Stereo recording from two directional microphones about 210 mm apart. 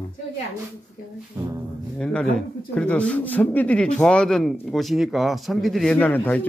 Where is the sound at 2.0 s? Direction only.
5° left (ahead or behind).